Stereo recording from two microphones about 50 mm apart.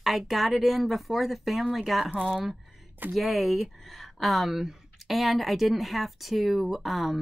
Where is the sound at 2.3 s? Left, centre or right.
Centre.